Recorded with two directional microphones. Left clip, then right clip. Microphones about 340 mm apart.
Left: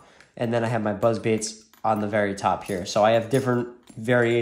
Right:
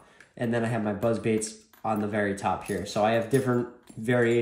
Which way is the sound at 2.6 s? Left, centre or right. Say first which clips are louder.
Left 3 dB; centre.